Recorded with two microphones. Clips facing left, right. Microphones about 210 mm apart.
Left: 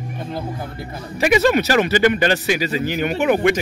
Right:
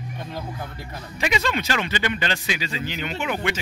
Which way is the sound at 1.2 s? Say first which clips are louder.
Left 9 dB; 45° left (ahead or behind).